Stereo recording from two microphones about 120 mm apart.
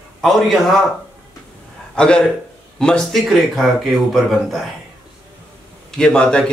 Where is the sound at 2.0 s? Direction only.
10° left (ahead or behind).